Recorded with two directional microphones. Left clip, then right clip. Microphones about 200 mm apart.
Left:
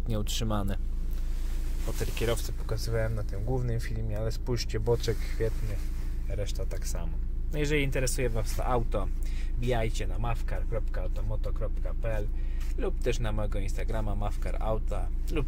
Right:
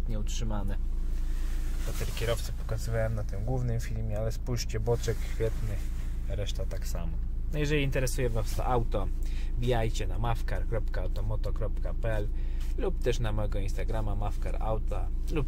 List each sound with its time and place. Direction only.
0.1 s speech: 35° left (ahead or behind)
2.1 s speech: 30° left (ahead or behind)
2.7 s speech: centre (ahead or behind)
10.2 s speech: 20° right (ahead or behind)
12.7 s speech: 5° right (ahead or behind)